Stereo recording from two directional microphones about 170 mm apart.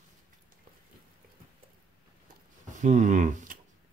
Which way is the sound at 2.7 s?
45° right (ahead or behind).